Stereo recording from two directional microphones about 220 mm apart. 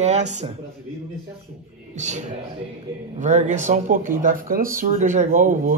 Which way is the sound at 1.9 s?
30° right (ahead or behind).